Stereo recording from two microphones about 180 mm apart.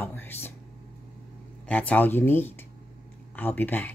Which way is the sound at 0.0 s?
10° left (ahead or behind).